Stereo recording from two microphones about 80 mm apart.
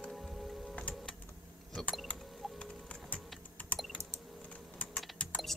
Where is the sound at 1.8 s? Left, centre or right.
Centre.